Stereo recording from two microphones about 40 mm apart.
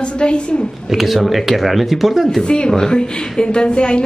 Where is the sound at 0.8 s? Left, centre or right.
Centre.